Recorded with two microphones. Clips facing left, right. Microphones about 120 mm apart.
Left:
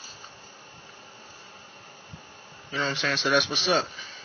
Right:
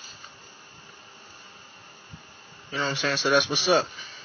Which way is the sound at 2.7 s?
5° right (ahead or behind).